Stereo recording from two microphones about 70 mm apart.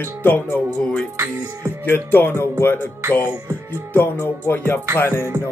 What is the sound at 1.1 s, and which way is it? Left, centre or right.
Music, right.